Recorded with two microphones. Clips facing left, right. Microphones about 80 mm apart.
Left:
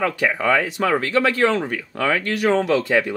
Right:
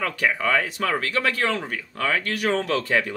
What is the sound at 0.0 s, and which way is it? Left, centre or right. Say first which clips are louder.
Speech: left 3 dB; left.